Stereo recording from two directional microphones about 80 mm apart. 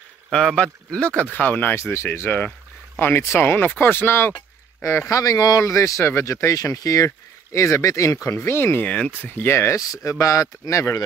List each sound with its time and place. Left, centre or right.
0.3 s speech: centre; by 4.4 s left
4.8 s speech: left
8.8 s speech: centre
9.6 s speech: left